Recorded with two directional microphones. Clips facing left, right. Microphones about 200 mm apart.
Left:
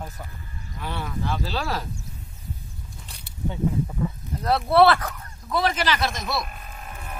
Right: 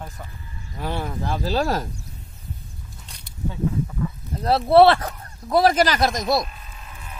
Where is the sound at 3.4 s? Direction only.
25° left (ahead or behind).